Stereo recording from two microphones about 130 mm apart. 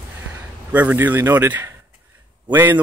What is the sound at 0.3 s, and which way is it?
Speech, 10° right (ahead or behind).